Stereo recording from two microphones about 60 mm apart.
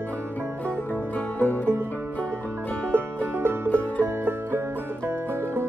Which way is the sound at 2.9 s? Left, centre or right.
Right.